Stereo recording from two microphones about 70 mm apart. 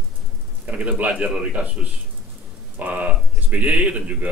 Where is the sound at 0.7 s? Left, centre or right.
Right.